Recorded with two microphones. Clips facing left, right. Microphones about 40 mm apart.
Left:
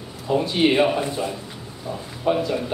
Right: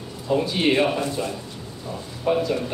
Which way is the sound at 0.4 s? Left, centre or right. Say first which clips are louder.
Left 2 dB; centre.